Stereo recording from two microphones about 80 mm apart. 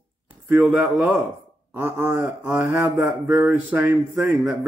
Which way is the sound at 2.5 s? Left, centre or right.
Right.